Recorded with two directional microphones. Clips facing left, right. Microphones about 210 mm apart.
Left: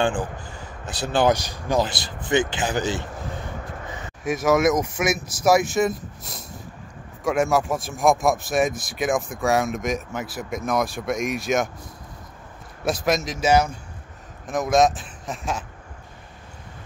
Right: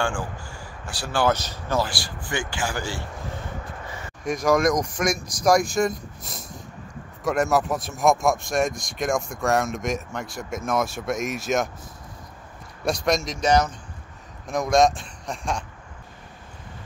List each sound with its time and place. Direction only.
0.0 s a man's voice: 20° left (ahead or behind)
4.2 s speech: 5° left (ahead or behind)
12.8 s speech: 5° left (ahead or behind)